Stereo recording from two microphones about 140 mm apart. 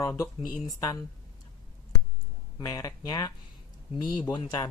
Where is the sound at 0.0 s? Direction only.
20° left (ahead or behind).